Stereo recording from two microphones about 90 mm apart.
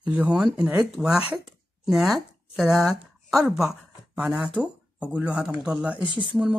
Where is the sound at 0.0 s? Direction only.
15° right (ahead or behind).